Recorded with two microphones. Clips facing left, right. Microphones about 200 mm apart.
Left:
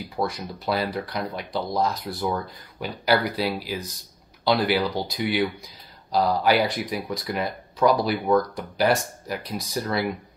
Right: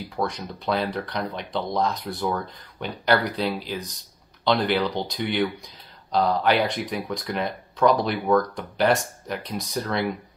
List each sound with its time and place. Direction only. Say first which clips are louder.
0.1 s speech: left 1 dB; 5° left (ahead or behind)